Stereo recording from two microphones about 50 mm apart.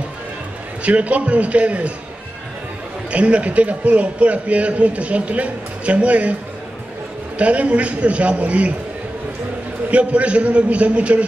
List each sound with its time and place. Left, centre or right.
0.8 s a man's voice: right
3.1 s a man's voice: right
7.3 s a man's voice: right
9.8 s a man's voice: right